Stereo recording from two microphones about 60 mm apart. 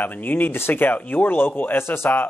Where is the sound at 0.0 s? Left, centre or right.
Left.